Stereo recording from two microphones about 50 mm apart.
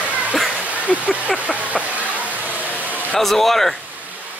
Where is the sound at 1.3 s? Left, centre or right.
Right.